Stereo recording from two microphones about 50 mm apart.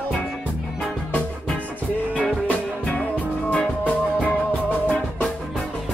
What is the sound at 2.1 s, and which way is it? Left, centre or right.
Music, left.